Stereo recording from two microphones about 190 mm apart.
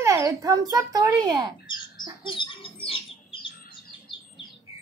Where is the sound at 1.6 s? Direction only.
25° left (ahead or behind).